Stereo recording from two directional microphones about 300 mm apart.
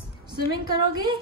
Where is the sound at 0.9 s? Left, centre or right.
Centre.